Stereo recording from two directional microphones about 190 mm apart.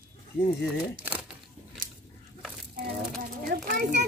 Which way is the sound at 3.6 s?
45° right (ahead or behind).